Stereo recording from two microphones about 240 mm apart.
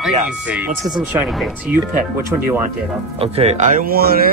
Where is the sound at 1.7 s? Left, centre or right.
Centre.